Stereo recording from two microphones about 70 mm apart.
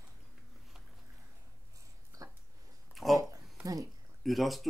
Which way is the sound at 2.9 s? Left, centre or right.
Centre.